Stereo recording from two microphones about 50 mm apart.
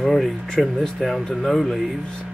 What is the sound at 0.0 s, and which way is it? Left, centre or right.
Speech, centre.